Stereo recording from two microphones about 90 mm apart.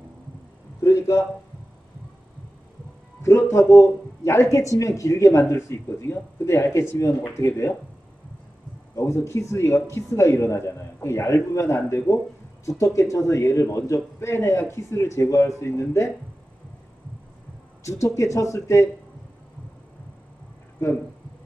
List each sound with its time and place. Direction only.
0.8 s speech: 35° left (ahead or behind)
3.2 s speech: 30° left (ahead or behind)
8.9 s speech: 30° left (ahead or behind)
17.8 s speech: 35° left (ahead or behind)